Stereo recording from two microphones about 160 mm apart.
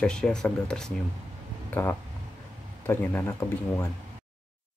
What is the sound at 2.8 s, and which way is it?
Speech, 15° left (ahead or behind).